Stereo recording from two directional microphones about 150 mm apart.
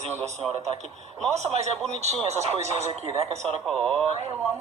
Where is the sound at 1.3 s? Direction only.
50° right (ahead or behind).